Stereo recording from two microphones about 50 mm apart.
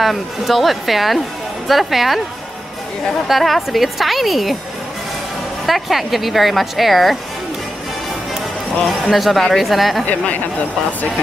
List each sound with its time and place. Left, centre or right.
0.0 s a woman's voice: centre
3.3 s a woman's voice: centre
5.7 s a woman's voice: centre
8.8 s a woman's voice: centre
10.0 s speech: left